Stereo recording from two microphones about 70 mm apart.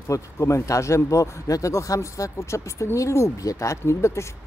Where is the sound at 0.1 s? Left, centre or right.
Left.